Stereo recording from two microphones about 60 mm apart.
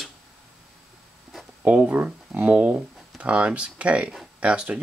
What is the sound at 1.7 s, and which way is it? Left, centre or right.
Speech, right.